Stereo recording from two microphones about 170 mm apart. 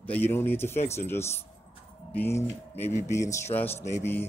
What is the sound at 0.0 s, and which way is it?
A man's voice, 10° left (ahead or behind).